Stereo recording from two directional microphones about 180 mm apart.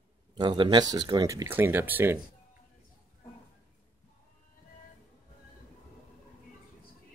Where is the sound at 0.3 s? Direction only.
25° right (ahead or behind).